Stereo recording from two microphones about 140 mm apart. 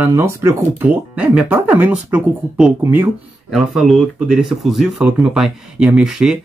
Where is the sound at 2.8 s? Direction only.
20° right (ahead or behind).